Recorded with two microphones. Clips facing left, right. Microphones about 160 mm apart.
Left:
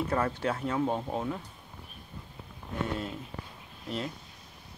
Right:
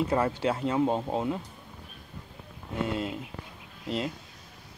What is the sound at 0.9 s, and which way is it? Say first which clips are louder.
Speech: right 3 dB; 25° right (ahead or behind).